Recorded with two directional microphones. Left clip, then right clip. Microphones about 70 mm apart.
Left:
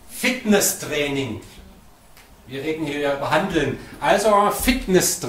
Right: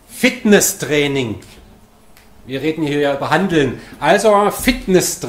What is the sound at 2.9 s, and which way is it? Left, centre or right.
Speech, right.